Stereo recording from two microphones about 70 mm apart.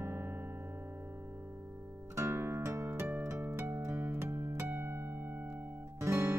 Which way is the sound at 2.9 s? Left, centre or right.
Right.